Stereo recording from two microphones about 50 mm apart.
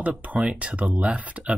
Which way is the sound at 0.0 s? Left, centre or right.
Right.